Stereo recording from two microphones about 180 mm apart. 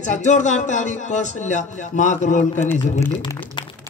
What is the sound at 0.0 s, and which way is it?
A man's voice, 40° left (ahead or behind).